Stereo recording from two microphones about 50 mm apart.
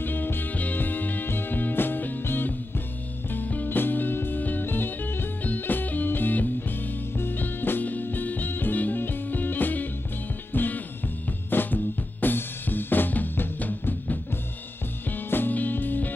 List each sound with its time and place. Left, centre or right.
0.0 s music: left
11.5 s drum kit: left
15.0 s music: left